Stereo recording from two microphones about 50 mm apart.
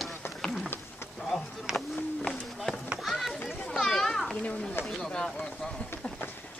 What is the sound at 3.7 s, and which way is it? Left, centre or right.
Children playing, centre.